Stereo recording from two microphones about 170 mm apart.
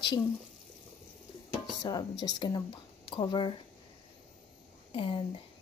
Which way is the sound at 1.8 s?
25° left (ahead or behind).